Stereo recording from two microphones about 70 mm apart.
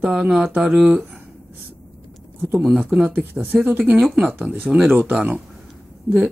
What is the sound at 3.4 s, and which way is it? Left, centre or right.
Speech, right.